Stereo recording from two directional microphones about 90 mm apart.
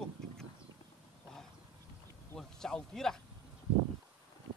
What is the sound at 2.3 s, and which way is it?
Speech, 5° left (ahead or behind).